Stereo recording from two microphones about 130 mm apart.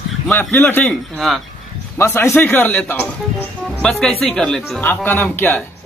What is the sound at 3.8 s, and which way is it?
Speech, 5° left (ahead or behind).